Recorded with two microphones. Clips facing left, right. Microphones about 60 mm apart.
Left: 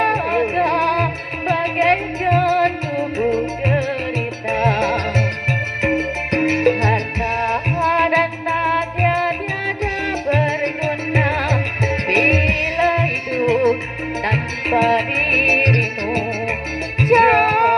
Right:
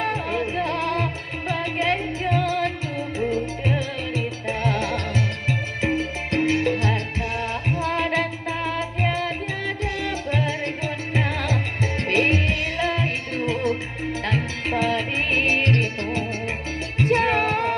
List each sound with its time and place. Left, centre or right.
0.0 s music: left